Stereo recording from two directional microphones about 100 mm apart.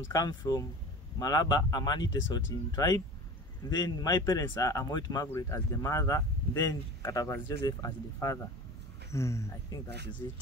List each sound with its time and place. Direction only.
0.1 s speech: 40° left (ahead or behind)
5.3 s speech: 30° left (ahead or behind)